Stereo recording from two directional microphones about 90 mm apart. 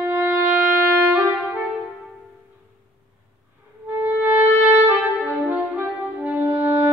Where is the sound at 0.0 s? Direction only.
25° right (ahead or behind).